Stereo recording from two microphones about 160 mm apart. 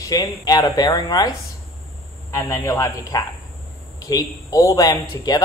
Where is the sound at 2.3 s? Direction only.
20° left (ahead or behind).